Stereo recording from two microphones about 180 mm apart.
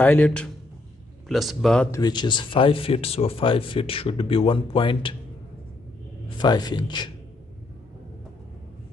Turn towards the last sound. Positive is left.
turn(degrees=25)  # may be behind; listen again after turning